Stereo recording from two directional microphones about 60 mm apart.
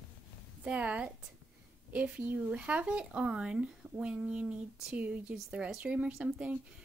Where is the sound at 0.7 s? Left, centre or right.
Right.